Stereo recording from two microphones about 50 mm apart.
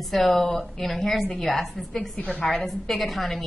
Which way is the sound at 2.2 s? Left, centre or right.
Left.